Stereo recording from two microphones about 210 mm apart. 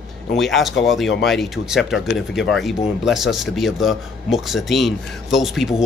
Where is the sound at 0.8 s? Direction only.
Centre (ahead or behind).